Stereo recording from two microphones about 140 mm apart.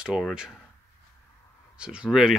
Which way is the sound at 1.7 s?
5° right (ahead or behind).